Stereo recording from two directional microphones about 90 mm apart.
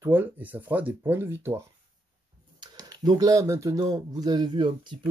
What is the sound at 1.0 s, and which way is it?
Speech, 30° right (ahead or behind).